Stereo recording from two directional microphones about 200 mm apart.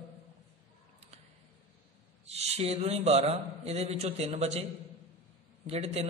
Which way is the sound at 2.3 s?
30° right (ahead or behind).